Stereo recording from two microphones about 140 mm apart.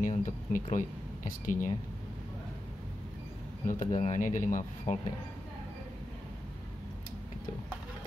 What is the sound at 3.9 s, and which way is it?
Speech, 50° left (ahead or behind).